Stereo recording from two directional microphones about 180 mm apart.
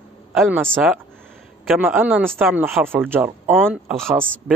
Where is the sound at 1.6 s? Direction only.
5° right (ahead or behind).